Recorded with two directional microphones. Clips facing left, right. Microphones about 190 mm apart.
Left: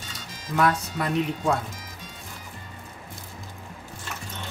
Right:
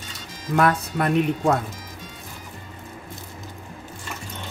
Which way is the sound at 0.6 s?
55° right (ahead or behind).